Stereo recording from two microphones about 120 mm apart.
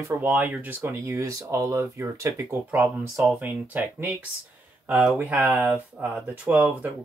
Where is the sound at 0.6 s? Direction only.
20° right (ahead or behind).